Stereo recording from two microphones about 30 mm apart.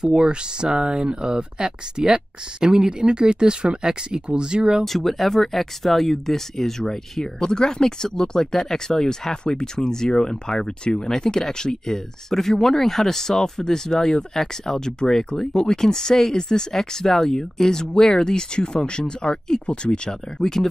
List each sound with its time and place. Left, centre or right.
0.0 s speech: right
4.8 s speech: centre
9.3 s speech: left
20.3 s speech: centre